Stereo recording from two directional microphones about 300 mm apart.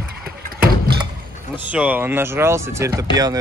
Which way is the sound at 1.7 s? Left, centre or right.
Centre.